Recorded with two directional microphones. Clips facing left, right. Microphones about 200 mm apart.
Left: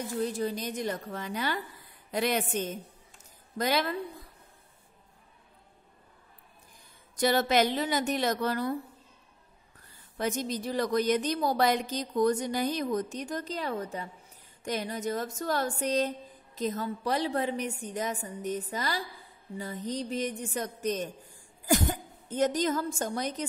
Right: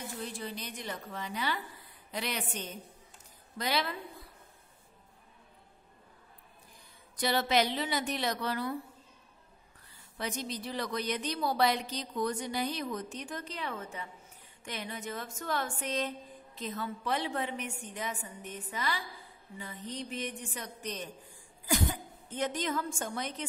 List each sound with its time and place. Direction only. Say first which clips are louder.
0.2 s a woman's voice: left 11 dB; 40° left (ahead or behind)
7.2 s a woman's voice: left 4 dB; 45° left (ahead or behind)
10.1 s a woman's voice: left 6 dB; 45° left (ahead or behind)